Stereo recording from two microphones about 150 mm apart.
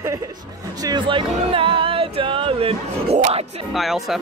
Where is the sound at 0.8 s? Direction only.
30° right (ahead or behind).